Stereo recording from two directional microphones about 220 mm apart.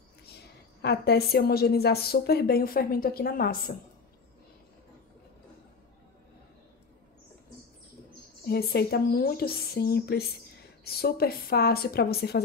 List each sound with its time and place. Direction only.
0.8 s a woman's voice: 45° left (ahead or behind)
8.5 s a woman's voice: 45° left (ahead or behind)